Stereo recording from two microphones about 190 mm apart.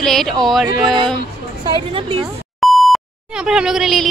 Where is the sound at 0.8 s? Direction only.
25° right (ahead or behind).